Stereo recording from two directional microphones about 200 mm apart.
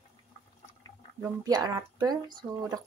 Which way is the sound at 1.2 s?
20° right (ahead or behind).